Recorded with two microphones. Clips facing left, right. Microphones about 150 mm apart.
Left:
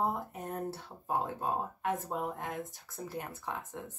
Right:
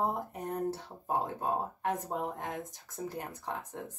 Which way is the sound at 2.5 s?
15° right (ahead or behind).